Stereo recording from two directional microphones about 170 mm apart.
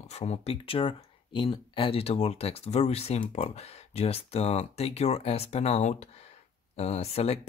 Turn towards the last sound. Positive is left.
turn(degrees=35)  # may be behind; listen again after turning